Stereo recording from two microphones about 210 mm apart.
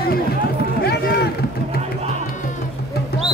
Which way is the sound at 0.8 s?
50° left (ahead or behind).